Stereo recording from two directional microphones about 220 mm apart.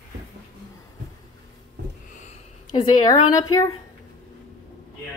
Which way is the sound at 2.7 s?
15° left (ahead or behind).